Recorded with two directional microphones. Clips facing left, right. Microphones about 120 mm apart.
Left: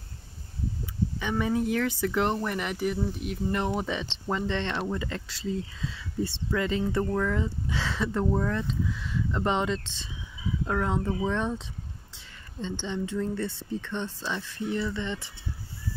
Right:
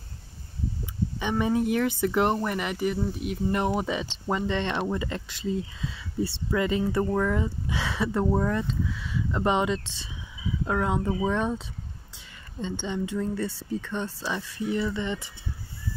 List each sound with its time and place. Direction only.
1.4 s speech: 20° right (ahead or behind)
2.4 s speech: centre (ahead or behind)
8.6 s speech: centre (ahead or behind)